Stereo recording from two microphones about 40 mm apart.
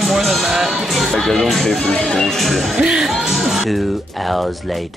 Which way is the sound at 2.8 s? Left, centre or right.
Centre.